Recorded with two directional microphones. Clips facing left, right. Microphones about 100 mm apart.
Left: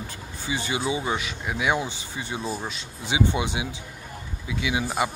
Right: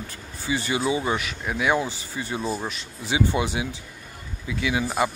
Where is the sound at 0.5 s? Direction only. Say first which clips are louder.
Right 3 dB; 20° left (ahead or behind).